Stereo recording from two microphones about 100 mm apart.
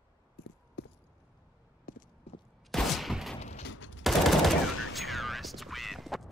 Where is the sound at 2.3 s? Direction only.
90° left.